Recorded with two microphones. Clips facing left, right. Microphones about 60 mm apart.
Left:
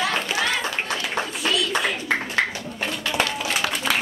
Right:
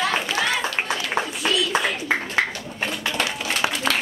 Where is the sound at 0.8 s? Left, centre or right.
Centre.